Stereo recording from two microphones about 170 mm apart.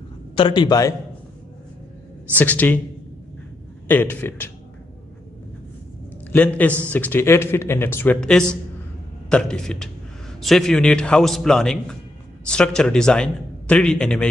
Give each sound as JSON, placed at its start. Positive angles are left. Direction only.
{"t": 0.4, "sound": "a man's voice", "side_deg": 25}
{"t": 2.3, "sound": "speech", "side_deg": 10}
{"t": 3.8, "sound": "speech", "side_deg": 10}
{"t": 6.3, "sound": "a man's voice", "side_deg": 10}